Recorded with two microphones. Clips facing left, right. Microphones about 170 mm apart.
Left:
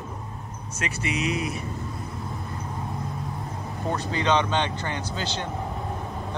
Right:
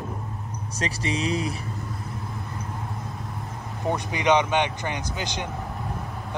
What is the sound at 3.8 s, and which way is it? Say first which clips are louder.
Speech: right 2 dB; 15° right (ahead or behind).